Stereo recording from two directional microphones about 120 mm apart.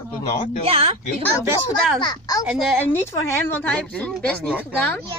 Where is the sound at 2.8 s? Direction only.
20° left (ahead or behind).